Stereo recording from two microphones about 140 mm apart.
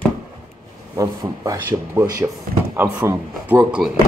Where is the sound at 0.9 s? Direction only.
25° right (ahead or behind); by 3.9 s 5° right (ahead or behind).